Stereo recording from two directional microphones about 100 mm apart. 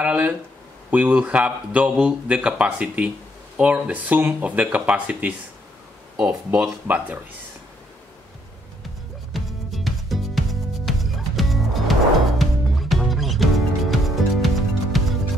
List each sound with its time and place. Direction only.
0.0 s speech: 15° right (ahead or behind)
9.3 s music: centre (ahead or behind)